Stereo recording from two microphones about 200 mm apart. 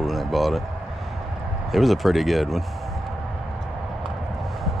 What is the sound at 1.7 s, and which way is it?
Speech, centre (ahead or behind).